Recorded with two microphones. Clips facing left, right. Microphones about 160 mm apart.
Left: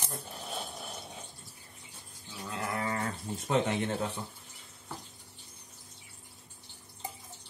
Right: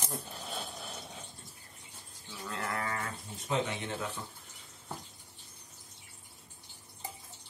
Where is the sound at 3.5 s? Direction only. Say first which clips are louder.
Left 4 dB; 50° left (ahead or behind).